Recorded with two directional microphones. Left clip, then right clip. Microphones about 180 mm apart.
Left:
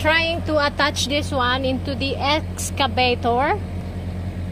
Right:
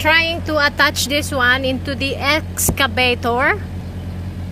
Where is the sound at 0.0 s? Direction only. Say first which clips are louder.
Right 4 dB; 5° right (ahead or behind).